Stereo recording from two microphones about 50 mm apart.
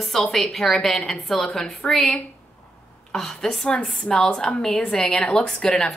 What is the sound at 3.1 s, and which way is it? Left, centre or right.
A woman's voice, centre.